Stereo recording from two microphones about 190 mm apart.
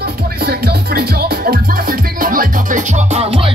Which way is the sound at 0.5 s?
55° right (ahead or behind).